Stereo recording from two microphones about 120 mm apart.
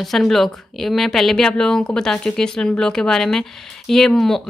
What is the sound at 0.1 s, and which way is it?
Speech, centre (ahead or behind).